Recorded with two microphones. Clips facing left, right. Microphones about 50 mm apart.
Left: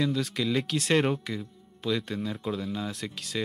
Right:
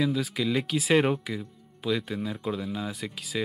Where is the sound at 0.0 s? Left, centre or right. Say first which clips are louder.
Right 1 dB; centre.